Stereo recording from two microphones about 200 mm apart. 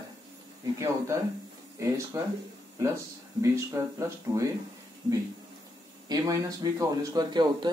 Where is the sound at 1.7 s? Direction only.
15° right (ahead or behind).